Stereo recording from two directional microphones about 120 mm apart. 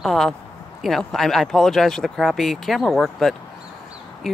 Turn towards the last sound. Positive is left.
turn(degrees=0)  # may be behind; listen again after turning